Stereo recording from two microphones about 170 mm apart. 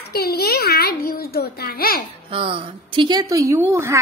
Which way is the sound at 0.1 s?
65° left (ahead or behind).